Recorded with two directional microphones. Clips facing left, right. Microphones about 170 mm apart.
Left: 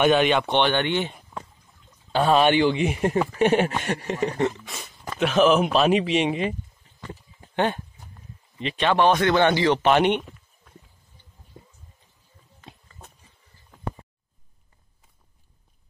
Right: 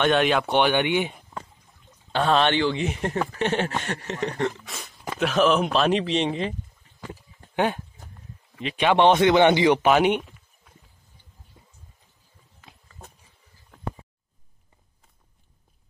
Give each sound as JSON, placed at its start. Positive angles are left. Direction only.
{"t": 0.0, "sound": "speech", "side_deg": 0}
{"t": 2.1, "sound": "speech", "side_deg": 10}
{"t": 7.5, "sound": "speech", "side_deg": -10}
{"t": 8.9, "sound": "speech", "side_deg": -20}
{"t": 9.8, "sound": "speech", "side_deg": -5}